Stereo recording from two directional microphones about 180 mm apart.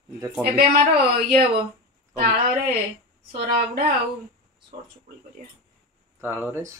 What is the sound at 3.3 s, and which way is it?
Speech, 60° right (ahead or behind).